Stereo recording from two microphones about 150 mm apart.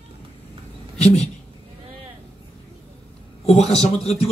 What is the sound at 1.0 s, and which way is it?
Speech, 50° left (ahead or behind).